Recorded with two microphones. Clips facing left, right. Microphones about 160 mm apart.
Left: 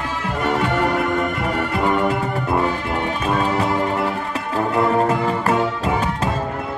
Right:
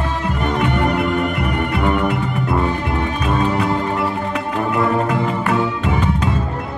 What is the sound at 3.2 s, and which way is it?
Music, 35° left (ahead or behind).